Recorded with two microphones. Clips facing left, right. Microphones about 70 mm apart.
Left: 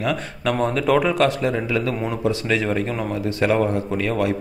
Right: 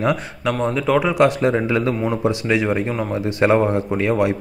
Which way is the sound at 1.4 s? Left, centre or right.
Right.